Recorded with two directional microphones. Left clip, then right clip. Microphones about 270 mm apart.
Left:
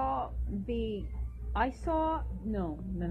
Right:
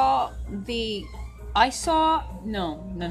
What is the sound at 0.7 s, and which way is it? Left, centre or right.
Speech, right.